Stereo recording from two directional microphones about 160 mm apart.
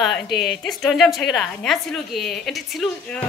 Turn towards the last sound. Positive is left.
turn(degrees=5)  # may be behind; listen again after turning